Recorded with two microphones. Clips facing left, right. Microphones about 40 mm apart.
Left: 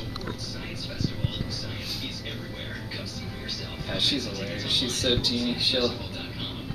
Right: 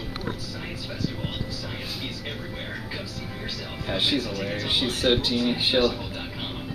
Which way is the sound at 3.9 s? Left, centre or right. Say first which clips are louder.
Right 3 dB; centre.